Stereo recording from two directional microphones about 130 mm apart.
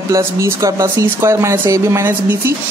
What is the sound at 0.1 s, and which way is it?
Speech, 25° right (ahead or behind).